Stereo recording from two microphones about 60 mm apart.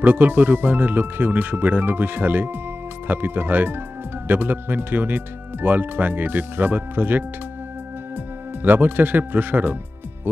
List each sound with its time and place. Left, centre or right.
0.0 s speech: right
8.6 s speech: right